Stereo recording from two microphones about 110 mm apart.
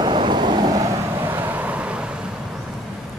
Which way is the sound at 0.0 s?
45° right (ahead or behind).